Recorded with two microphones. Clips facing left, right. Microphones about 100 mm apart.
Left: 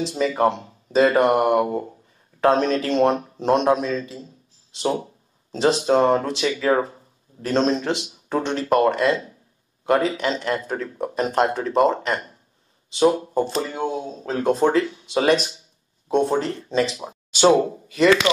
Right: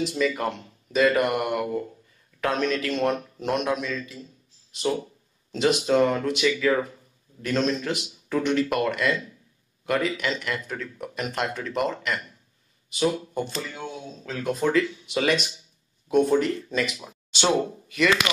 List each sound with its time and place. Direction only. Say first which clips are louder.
0.0 s speech: left 5 dB; 35° left (ahead or behind)
5.5 s speech: left 3 dB; 35° left (ahead or behind)